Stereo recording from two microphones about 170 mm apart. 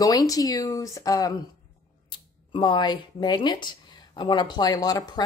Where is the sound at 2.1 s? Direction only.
30° left (ahead or behind).